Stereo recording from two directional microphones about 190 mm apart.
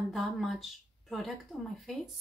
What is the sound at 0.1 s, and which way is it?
Speech, centre (ahead or behind).